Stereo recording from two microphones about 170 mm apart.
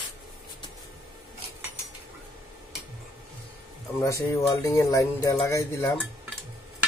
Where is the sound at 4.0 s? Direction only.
20° left (ahead or behind).